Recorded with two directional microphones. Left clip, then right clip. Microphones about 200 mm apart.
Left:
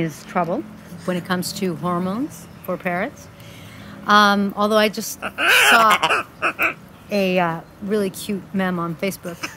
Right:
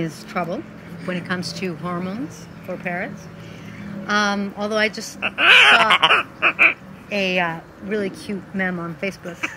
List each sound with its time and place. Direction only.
0.0 s a woman's voice: 10° left (ahead or behind)
4.1 s a woman's voice: 20° left (ahead or behind)
5.3 s a sound: 5° left (ahead or behind)
7.1 s speech: 25° left (ahead or behind)